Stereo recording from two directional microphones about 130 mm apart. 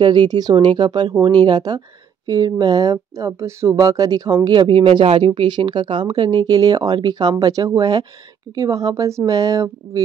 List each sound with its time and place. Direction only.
0.0 s speech: 35° right (ahead or behind)